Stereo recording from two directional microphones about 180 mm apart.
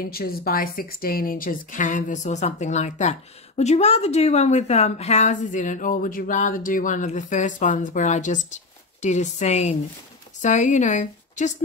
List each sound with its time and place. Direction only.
0.1 s a woman's voice: 55° left (ahead or behind)